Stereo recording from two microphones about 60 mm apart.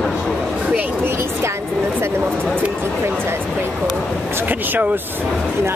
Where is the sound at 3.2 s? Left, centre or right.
Right.